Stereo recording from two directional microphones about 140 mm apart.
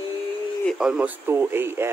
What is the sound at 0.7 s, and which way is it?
Speech, 5° right (ahead or behind).